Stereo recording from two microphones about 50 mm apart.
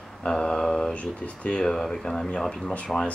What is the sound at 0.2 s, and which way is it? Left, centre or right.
Mantra, centre.